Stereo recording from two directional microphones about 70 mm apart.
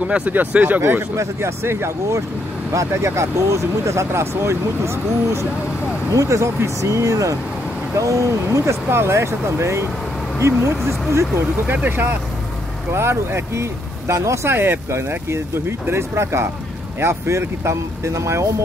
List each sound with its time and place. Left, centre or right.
0.0 s speech: centre
1.1 s speech: right
11.6 s speech: right